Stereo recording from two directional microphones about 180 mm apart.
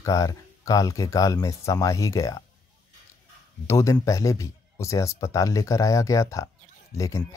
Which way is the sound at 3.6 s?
20° left (ahead or behind).